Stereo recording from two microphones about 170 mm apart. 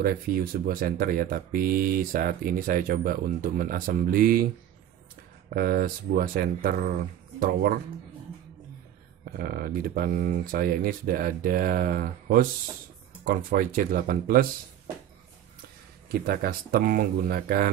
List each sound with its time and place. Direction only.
0.0 s speech: 55° right (ahead or behind)
5.5 s speech: 60° right (ahead or behind)
9.2 s speech: 60° right (ahead or behind)
16.1 s speech: 60° right (ahead or behind)